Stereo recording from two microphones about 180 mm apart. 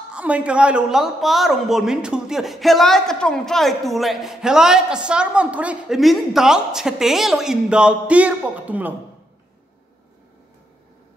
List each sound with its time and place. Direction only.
0.1 s speech: 5° right (ahead or behind)